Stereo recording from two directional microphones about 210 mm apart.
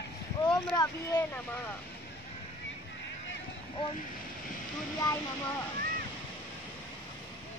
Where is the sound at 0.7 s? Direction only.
15° left (ahead or behind).